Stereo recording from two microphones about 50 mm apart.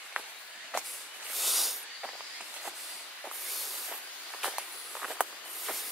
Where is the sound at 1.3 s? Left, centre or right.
Centre.